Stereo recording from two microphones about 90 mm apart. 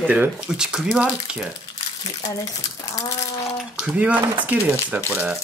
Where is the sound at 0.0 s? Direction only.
15° right (ahead or behind).